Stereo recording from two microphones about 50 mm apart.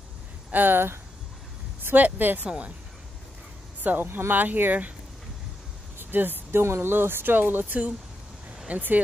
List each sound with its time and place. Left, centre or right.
0.5 s speech: right
2.4 s speech: centre
3.8 s speech: right
5.9 s a sound: right
6.6 s speech: right